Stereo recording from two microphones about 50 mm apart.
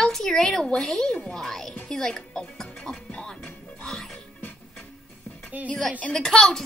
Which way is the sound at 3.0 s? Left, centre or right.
Centre.